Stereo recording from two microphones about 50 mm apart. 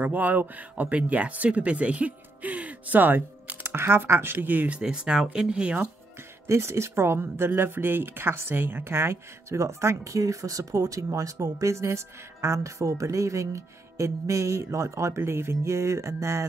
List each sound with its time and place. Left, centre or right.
0.0 s speech: right
3.6 s speech: right
4.7 s speech: centre
6.4 s speech: right